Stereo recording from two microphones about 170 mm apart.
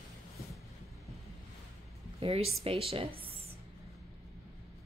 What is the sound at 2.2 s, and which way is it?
Speech, 35° right (ahead or behind).